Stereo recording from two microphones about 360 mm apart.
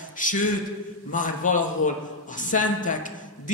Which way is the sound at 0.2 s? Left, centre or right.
Left.